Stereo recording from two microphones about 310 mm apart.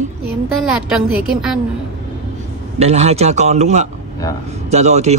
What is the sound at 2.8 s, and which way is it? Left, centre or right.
Speech, right.